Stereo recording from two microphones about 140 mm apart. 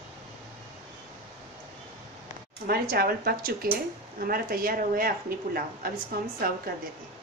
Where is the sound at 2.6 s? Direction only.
90° right.